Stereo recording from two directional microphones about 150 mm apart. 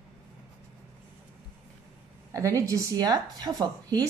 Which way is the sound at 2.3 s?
20° right (ahead or behind).